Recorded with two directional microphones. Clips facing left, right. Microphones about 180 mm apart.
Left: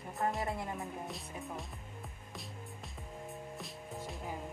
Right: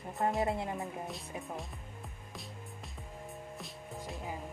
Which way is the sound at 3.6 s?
Centre (ahead or behind).